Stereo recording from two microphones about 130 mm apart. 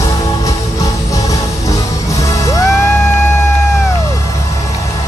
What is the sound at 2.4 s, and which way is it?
Music, 25° left (ahead or behind).